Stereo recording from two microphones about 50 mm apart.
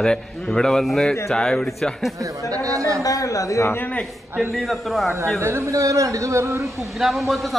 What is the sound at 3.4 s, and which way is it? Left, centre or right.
Speech, left.